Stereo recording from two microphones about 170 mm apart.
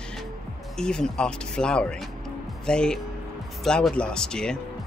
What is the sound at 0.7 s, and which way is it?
Speech, 5° left (ahead or behind).